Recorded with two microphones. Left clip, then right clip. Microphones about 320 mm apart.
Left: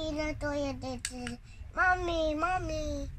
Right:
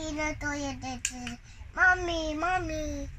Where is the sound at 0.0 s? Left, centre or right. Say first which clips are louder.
Right 2 dB; centre.